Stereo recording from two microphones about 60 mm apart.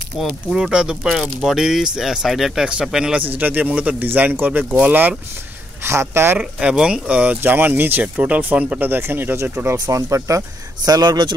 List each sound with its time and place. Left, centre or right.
0.2 s speech: centre
3.2 s speech: right
5.9 s speech: right
6.6 s speech: centre
7.4 s speech: right
9.8 s speech: right
10.9 s speech: right